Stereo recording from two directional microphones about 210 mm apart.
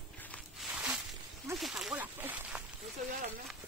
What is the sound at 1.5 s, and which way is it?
Speech, centre (ahead or behind).